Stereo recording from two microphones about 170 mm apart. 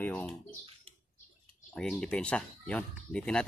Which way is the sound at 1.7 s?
5° left (ahead or behind).